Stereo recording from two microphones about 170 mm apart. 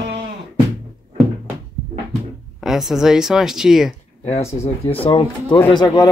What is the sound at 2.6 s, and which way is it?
Speech, centre (ahead or behind).